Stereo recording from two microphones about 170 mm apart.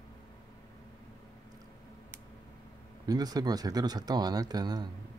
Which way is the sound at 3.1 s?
20° right (ahead or behind).